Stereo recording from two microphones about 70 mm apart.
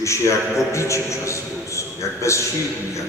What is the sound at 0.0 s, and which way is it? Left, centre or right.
A man's voice, left.